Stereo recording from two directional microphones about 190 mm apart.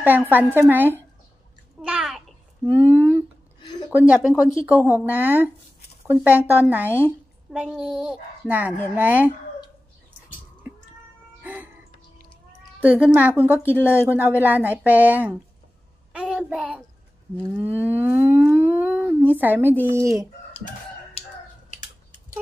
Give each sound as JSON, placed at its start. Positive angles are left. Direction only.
{"t": 0.0, "sound": "a woman's voice", "side_deg": -10}
{"t": 1.8, "sound": "bathtub", "side_deg": -5}
{"t": 2.7, "sound": "a sound", "side_deg": -10}
{"t": 3.9, "sound": "a woman's voice", "side_deg": -5}
{"t": 11.4, "sound": "music", "side_deg": -10}
{"t": 12.8, "sound": "a woman's voice", "side_deg": -10}
{"t": 16.1, "sound": "child singing", "side_deg": -5}
{"t": 17.4, "sound": "speech", "side_deg": 0}
{"t": 17.6, "sound": "a sound", "side_deg": -10}
{"t": 19.9, "sound": "a woman's voice", "side_deg": -15}
{"t": 21.2, "sound": "chicken", "side_deg": 35}
{"t": 21.6, "sound": "a sound", "side_deg": 40}